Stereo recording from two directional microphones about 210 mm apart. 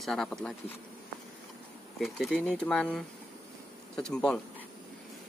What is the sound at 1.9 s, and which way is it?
Speech, centre (ahead or behind).